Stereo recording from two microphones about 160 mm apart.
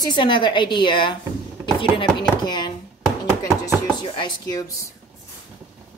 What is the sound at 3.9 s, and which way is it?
Speech, 30° left (ahead or behind).